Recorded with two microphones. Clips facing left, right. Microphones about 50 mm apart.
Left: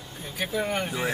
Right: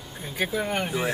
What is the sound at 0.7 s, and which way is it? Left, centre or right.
Speech, centre.